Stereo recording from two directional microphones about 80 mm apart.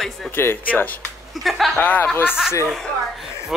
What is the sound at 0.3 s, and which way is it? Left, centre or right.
Speech, left.